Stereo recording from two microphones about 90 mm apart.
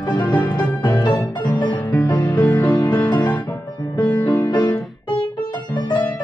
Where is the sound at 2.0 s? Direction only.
15° left (ahead or behind).